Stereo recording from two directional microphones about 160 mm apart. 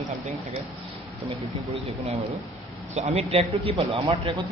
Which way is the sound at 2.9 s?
40° right (ahead or behind).